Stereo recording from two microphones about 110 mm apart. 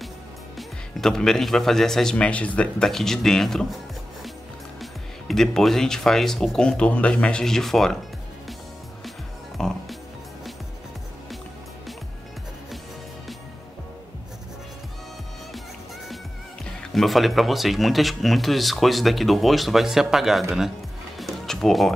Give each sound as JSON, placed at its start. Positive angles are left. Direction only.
{"t": 0.6, "sound": "speech", "side_deg": 5}
{"t": 5.3, "sound": "speech", "side_deg": 5}
{"t": 9.6, "sound": "music", "side_deg": 5}
{"t": 16.8, "sound": "speech", "side_deg": 0}
{"t": 21.2, "sound": "music", "side_deg": 0}